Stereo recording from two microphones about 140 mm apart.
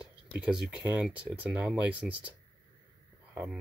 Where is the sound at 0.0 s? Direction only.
10° right (ahead or behind).